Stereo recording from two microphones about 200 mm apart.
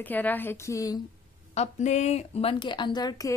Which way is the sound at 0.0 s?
10° left (ahead or behind).